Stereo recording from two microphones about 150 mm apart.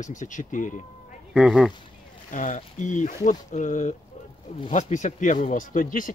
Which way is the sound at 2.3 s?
60° left (ahead or behind).